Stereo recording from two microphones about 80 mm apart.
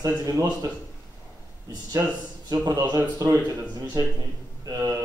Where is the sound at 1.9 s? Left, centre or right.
Right.